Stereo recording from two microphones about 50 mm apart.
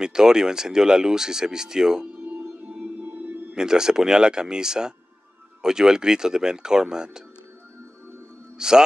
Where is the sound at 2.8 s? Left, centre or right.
Right.